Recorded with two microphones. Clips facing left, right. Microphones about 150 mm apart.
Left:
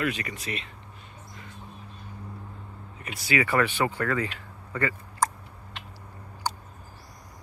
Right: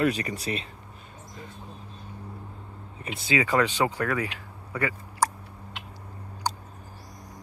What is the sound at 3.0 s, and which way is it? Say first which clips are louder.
Speech: right 1 dB; 25° right (ahead or behind).